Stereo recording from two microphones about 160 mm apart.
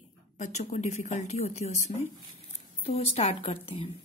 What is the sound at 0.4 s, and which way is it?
A woman's voice, 45° left (ahead or behind).